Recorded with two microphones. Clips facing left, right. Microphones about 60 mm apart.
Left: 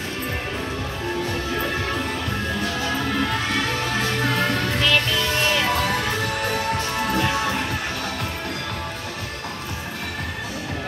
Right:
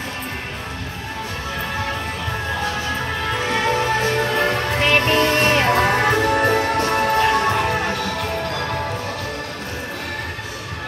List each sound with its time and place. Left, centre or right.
4.7 s music: right